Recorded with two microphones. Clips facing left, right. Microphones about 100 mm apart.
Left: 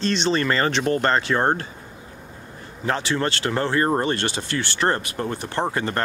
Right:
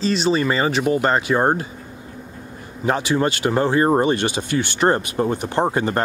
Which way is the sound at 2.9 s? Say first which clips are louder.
Right 4 dB; 15° right (ahead or behind).